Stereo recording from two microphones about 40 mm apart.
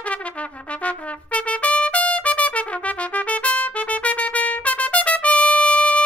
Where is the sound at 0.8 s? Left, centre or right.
Left.